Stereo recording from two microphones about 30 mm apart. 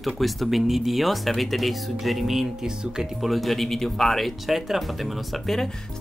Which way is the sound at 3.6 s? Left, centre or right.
Centre.